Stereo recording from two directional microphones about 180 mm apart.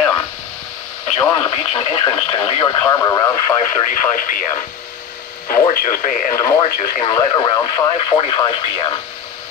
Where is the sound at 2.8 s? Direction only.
20° left (ahead or behind).